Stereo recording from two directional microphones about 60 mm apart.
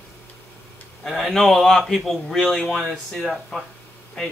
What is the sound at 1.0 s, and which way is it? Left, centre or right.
Speech, centre.